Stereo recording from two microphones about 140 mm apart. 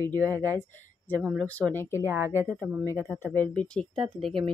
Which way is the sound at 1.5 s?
10° left (ahead or behind).